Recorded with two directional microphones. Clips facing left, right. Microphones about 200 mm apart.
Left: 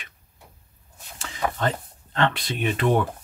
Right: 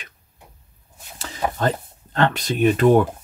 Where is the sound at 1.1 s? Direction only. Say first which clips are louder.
Right 3 dB; 35° right (ahead or behind).